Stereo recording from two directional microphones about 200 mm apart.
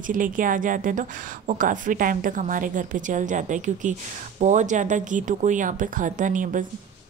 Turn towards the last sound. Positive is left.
turn(degrees=-40)  # may be behind; listen again after turning